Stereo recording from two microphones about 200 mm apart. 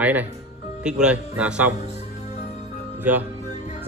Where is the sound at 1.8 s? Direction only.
35° left (ahead or behind).